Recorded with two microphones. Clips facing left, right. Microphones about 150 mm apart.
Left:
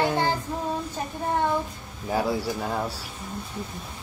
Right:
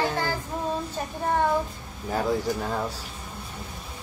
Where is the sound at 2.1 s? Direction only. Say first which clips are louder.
Even; 10° left (ahead or behind).